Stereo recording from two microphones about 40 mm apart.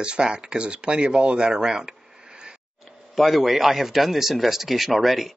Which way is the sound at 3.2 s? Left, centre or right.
Centre.